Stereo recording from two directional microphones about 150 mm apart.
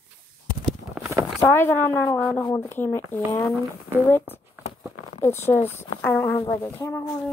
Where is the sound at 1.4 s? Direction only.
15° left (ahead or behind).